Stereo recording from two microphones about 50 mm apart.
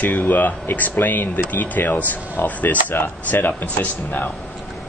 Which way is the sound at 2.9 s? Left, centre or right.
Left.